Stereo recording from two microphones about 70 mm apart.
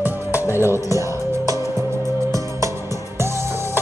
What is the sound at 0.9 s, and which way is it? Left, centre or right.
Music, right.